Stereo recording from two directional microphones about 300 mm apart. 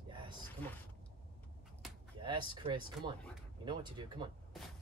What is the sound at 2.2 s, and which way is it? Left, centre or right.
Speech, centre.